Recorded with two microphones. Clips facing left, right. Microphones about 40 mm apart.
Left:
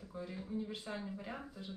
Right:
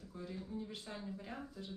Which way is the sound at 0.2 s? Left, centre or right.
Centre.